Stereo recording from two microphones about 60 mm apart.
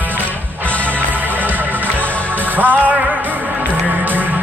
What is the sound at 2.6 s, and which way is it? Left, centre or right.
Speech, right.